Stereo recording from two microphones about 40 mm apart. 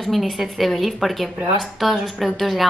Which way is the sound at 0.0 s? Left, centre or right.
Centre.